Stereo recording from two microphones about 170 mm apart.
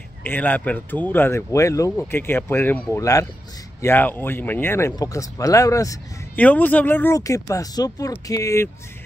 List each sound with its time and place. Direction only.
0.2 s speech: 10° left (ahead or behind)